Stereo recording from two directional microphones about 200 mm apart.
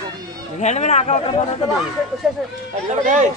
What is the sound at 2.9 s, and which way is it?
Speech, 35° right (ahead or behind).